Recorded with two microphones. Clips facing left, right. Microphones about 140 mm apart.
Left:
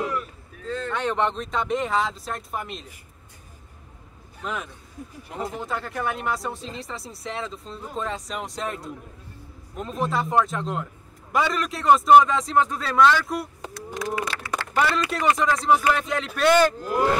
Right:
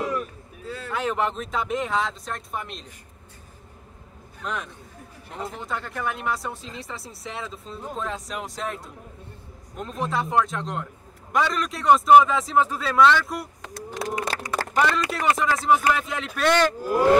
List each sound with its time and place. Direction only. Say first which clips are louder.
0.7 s speech: left 1 dB; 10° right (ahead or behind)
4.4 s a man's voice: even; 5° left (ahead or behind)
13.9 s speech: even; 30° right (ahead or behind)
14.3 s a sound: right 2 dB; 40° right (ahead or behind)
14.8 s speech: even; centre (ahead or behind)